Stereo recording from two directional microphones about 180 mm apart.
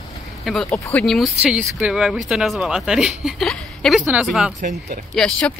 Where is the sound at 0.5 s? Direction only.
Centre (ahead or behind).